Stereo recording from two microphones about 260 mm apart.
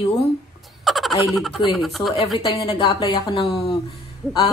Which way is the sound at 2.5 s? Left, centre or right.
Centre.